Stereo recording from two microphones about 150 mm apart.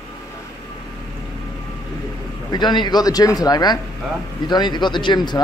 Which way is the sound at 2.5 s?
30° left (ahead or behind).